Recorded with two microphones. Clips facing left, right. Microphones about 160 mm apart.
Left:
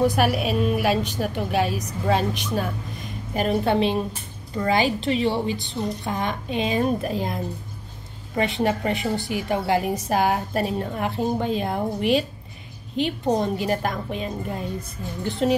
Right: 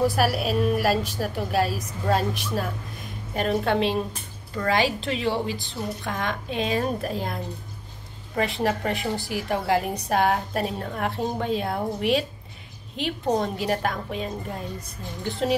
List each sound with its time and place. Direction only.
0.0 s a woman's voice: centre (ahead or behind)